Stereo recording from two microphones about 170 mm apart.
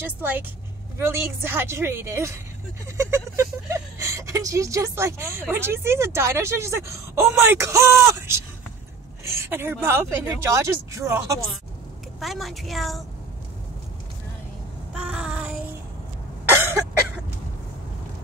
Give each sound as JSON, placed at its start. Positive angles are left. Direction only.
{"t": 0.0, "sound": "speech", "side_deg": -10}
{"t": 12.2, "sound": "a woman's voice", "side_deg": 0}
{"t": 15.0, "sound": "child singing", "side_deg": -5}
{"t": 16.4, "sound": "cough", "side_deg": -10}